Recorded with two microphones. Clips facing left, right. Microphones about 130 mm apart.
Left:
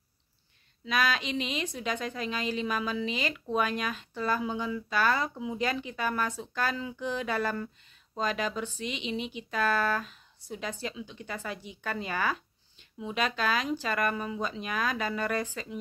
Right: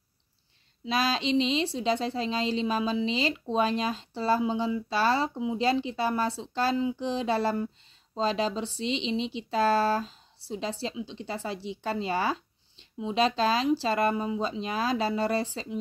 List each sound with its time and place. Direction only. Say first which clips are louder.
0.8 s speech: right 2 dB; 30° right (ahead or behind)